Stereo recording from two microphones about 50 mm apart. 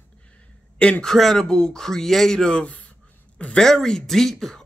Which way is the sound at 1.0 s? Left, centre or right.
Centre.